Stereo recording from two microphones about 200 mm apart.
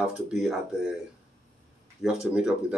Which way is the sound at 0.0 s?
5° right (ahead or behind).